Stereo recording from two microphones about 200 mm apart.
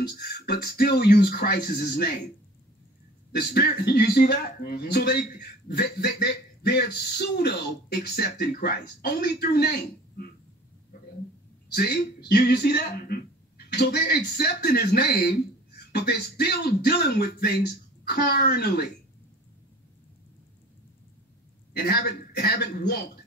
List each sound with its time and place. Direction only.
0.1 s speech: 55° left (ahead or behind)
3.3 s speech: 55° left (ahead or behind)
11.7 s speech: 55° left (ahead or behind)
21.7 s speech: 50° left (ahead or behind)